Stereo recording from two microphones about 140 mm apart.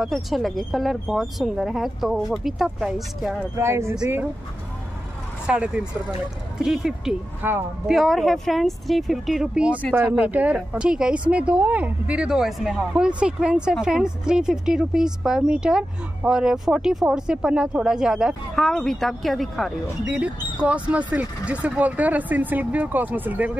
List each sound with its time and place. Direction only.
0.0 s a woman's voice: centre (ahead or behind)
3.5 s speech: 20° right (ahead or behind)
5.5 s a woman's voice: 5° right (ahead or behind)
7.4 s speech: 15° right (ahead or behind)
7.9 s a woman's voice: centre (ahead or behind)